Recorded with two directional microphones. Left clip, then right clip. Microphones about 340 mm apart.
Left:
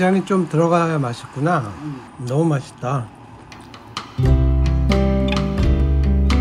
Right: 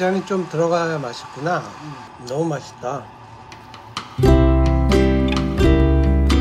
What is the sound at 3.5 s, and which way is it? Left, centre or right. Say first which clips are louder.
Music: even; centre.